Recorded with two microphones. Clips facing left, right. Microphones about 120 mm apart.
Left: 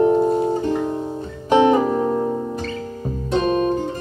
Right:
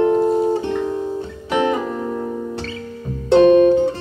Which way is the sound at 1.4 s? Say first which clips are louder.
Left 5 dB; 30° left (ahead or behind).